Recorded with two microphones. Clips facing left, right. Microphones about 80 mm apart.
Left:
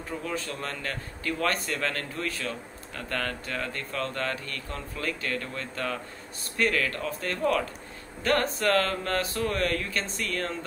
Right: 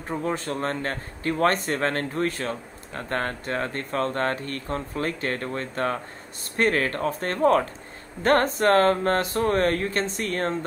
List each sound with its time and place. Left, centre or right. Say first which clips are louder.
0.1 s a man's voice: right 6 dB; right